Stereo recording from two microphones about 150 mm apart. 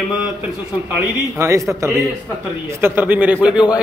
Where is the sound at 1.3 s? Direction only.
20° right (ahead or behind).